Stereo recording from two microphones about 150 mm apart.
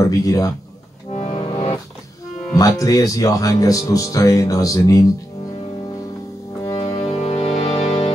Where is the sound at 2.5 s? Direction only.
25° left (ahead or behind).